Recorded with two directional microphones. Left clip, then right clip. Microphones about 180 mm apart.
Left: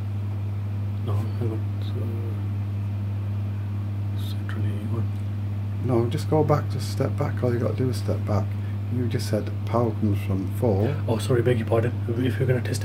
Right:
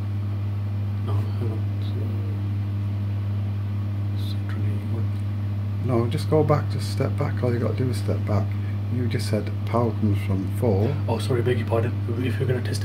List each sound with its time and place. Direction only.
5.9 s speech: centre (ahead or behind)
10.8 s speech: 35° left (ahead or behind)